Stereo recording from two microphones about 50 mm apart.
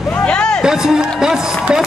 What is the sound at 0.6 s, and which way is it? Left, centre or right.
Speech, centre.